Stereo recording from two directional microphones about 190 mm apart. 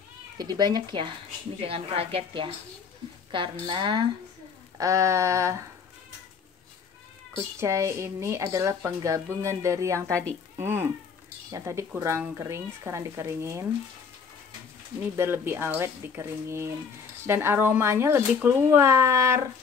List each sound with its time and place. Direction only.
0.4 s a woman's voice: 20° right (ahead or behind)
7.6 s speech: 15° right (ahead or behind)
15.1 s speech: 10° right (ahead or behind)